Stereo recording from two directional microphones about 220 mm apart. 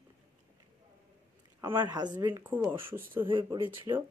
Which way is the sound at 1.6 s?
15° right (ahead or behind).